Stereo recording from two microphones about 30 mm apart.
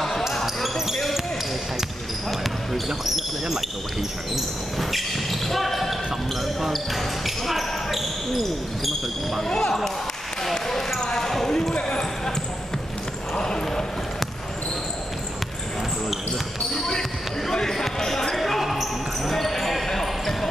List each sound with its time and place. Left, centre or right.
0.3 s basketball bounce: centre
4.7 s speech: centre
7.2 s speech: centre
9.5 s speech: left
10.4 s speech: centre
11.1 s basketball bounce: centre
13.4 s clip-clop: left
16.7 s basketball bounce: centre
18.4 s basketball bounce: centre
19.3 s basketball bounce: centre